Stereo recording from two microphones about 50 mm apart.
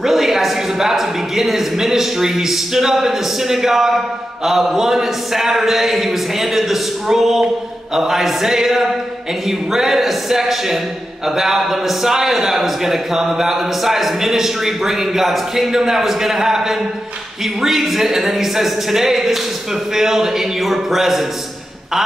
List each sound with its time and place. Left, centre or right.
0.0 s a man's voice: centre